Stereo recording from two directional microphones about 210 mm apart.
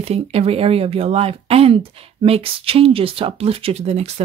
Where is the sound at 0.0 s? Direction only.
30° right (ahead or behind).